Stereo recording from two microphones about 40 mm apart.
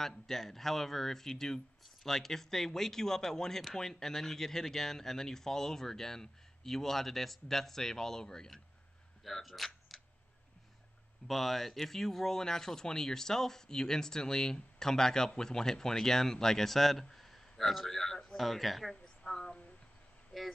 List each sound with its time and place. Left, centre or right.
0.0 s speech: centre
9.2 s speech: centre
9.9 s camera: centre
11.2 s speech: centre
19.3 s a sound: centre
20.3 s speech: centre